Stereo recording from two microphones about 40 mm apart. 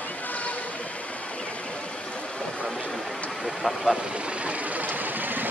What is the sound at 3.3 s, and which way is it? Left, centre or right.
Speech, centre.